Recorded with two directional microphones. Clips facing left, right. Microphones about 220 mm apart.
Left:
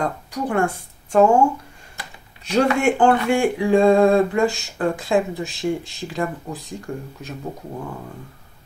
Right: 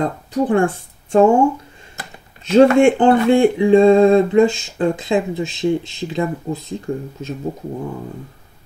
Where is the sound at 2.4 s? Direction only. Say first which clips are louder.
Right 9 dB; 25° right (ahead or behind).